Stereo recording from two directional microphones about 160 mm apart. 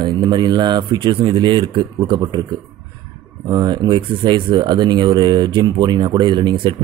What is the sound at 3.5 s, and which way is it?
Speech, 25° right (ahead or behind).